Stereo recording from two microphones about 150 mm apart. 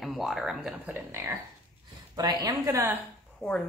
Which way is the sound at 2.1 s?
25° right (ahead or behind).